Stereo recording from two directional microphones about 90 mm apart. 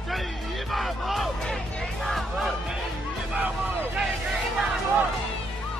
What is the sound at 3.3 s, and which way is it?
Music, 20° right (ahead or behind).